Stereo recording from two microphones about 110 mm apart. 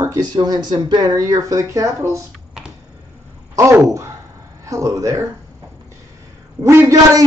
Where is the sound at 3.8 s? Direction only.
25° right (ahead or behind).